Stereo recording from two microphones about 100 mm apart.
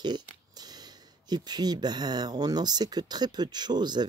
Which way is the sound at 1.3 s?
45° right (ahead or behind).